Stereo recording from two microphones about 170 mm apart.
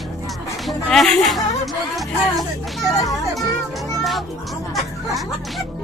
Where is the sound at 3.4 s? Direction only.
Centre (ahead or behind).